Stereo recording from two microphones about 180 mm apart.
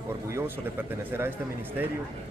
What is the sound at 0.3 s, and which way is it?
A man's voice, 15° right (ahead or behind).